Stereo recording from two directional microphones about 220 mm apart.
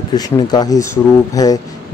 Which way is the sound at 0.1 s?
20° left (ahead or behind).